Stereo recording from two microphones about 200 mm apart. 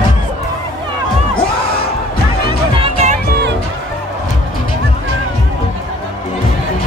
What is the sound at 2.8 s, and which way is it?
Music, 35° right (ahead or behind).